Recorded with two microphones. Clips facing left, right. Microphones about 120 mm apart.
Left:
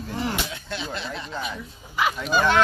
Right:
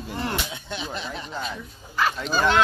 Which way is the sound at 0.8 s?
5° right (ahead or behind).